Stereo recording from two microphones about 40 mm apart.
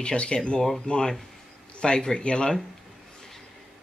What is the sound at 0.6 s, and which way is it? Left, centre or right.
Speech, centre.